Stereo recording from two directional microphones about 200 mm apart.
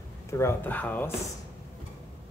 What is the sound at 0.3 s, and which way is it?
Speech, 15° left (ahead or behind).